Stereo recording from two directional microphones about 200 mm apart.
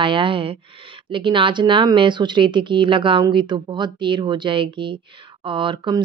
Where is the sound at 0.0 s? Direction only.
25° right (ahead or behind).